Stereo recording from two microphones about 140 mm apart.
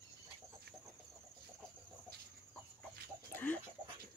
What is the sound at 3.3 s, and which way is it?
Chicken, 10° left (ahead or behind).